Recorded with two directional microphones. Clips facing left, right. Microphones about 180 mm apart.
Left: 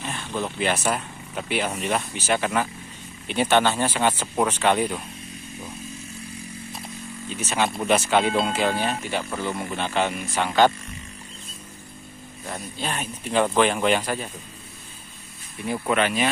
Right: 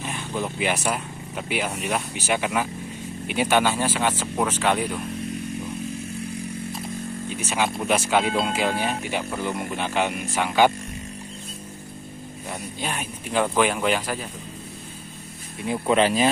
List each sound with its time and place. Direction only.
0.0 s speech: 10° right (ahead or behind)
7.2 s speech: 10° right (ahead or behind)
12.7 s speech: 10° right (ahead or behind)
15.6 s speech: 25° right (ahead or behind)